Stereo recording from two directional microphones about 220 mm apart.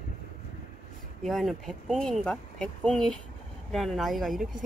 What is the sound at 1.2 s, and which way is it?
Speech, centre (ahead or behind).